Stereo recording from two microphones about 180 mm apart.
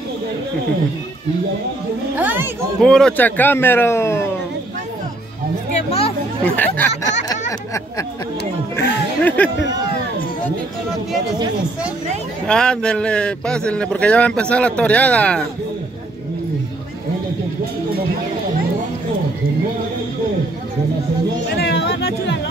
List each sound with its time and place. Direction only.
2.1 s speech: 10° right (ahead or behind)
2.8 s a man's voice: 5° left (ahead or behind)
5.7 s hubbub: 35° left (ahead or behind)
6.4 s a man's voice: 10° left (ahead or behind)
8.7 s a man's voice: 10° left (ahead or behind)
12.4 s a man's voice: 5° left (ahead or behind)
21.5 s chatter: 70° left (ahead or behind)